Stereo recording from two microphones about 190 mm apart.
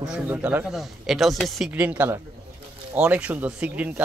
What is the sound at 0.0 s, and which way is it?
A man's voice, 5° right (ahead or behind).